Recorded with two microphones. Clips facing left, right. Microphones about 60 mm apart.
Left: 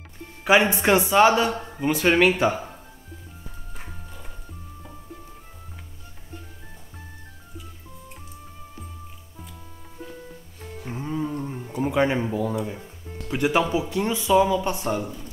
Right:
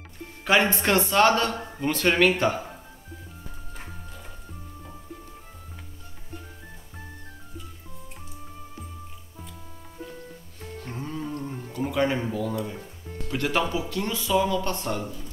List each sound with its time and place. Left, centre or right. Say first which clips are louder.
0.4 s a man's voice: left 3 dB; centre
3.7 s music: left 1 dB; centre
10.8 s a sound: left 5 dB; centre
13.3 s a man's voice: left 4 dB; centre